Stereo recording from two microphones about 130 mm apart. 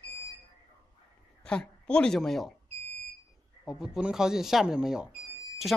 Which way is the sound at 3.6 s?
5° right (ahead or behind).